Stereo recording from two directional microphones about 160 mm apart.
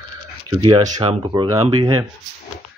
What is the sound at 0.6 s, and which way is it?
Speech, 30° right (ahead or behind).